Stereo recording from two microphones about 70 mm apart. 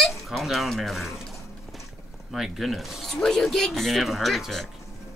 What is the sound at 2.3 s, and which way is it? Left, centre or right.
Speech, centre.